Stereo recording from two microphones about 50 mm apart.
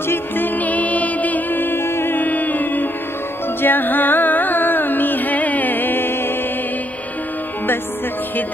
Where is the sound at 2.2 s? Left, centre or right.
Left.